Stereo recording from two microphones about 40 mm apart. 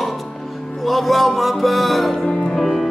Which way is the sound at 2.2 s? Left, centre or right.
Centre.